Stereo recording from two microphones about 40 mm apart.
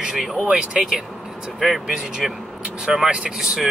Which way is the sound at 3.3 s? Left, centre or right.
Centre.